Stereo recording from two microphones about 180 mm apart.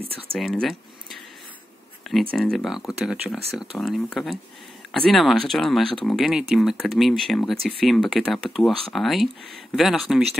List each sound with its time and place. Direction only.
0.3 s speech: centre (ahead or behind)
2.3 s speech: centre (ahead or behind)